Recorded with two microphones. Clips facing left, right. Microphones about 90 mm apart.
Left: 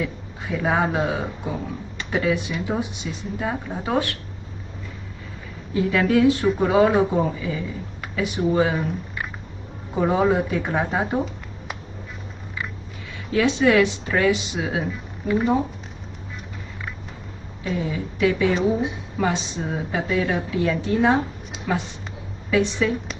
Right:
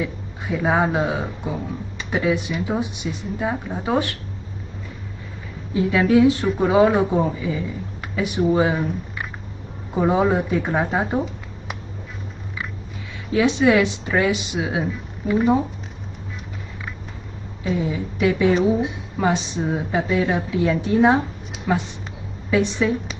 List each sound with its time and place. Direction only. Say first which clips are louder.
0.0 s a sound: right 1 dB; 15° right (ahead or behind)
1.0 s speech: right 1 dB; 15° right (ahead or behind)
5.8 s speech: right 2 dB; 10° right (ahead or behind)
6.4 s speech: right 1 dB; centre (ahead or behind)
9.9 s speech: right 1 dB; 15° right (ahead or behind)
13.3 s speech: right 1 dB; 15° right (ahead or behind)
14.9 s speech: right 1 dB; centre (ahead or behind)
17.7 s speech: even; 15° right (ahead or behind)
18.5 s a woman's voice: right 3 dB; centre (ahead or behind)
19.2 s speech: right 3 dB; 20° right (ahead or behind)